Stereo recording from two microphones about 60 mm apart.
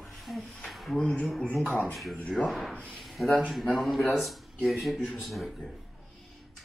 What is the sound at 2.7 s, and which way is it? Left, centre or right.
Speech, left.